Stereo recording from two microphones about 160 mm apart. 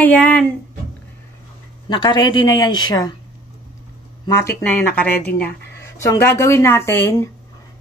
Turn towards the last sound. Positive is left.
turn(degrees=15)  # may be behind; listen again after turning